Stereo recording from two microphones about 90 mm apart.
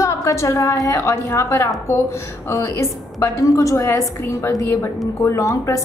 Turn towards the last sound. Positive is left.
turn(degrees=35)  # may be behind; listen again after turning